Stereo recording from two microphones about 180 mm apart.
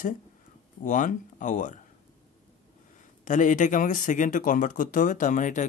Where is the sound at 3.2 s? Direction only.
45° left (ahead or behind).